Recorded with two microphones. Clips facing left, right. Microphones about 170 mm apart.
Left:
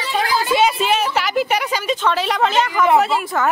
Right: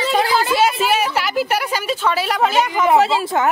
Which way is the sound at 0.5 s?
5° right (ahead or behind).